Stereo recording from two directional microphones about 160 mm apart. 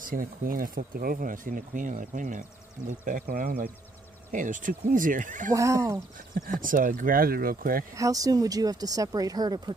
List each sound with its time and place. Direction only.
0.0 s speech: 60° right (ahead or behind)
4.3 s speech: 55° right (ahead or behind)
5.5 s speech: 20° right (ahead or behind)
6.1 s speech: 60° right (ahead or behind)
7.9 s speech: 20° right (ahead or behind)